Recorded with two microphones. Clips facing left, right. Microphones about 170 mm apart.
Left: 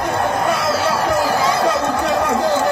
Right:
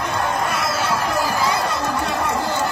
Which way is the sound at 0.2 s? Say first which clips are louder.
Left 3 dB; 60° left (ahead or behind).